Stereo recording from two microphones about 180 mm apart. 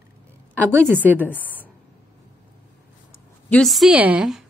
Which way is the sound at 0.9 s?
10° left (ahead or behind).